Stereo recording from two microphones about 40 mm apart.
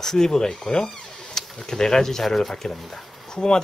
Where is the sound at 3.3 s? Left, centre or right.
Centre.